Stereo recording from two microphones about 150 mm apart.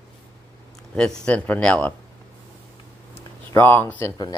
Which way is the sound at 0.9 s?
5° left (ahead or behind).